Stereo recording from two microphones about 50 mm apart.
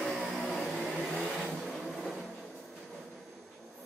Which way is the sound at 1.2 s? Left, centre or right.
Centre.